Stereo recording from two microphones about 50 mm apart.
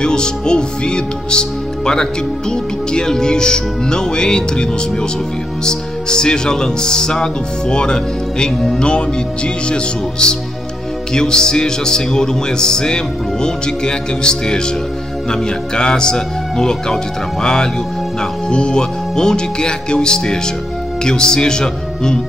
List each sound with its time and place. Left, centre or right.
0.0 s speech: centre